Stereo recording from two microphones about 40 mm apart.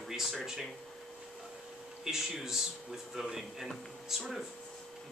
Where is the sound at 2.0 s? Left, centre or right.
Centre.